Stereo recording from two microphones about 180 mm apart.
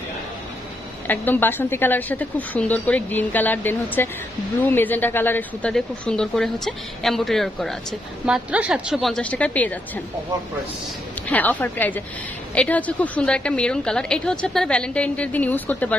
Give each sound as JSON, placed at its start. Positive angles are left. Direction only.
{"t": 1.0, "sound": "a woman's voice", "side_deg": 10}
{"t": 11.2, "sound": "a woman's voice", "side_deg": 10}